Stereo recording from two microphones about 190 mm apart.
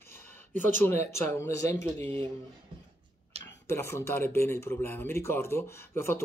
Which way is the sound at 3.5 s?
15° left (ahead or behind).